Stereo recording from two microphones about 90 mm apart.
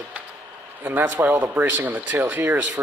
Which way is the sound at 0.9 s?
20° right (ahead or behind).